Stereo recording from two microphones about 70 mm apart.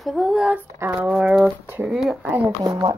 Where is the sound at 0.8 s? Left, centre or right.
Right.